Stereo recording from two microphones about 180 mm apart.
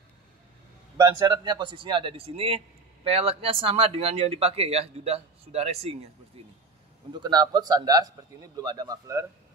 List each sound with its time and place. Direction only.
0.9 s a man's voice: 20° right (ahead or behind)
7.2 s a man's voice: 25° right (ahead or behind)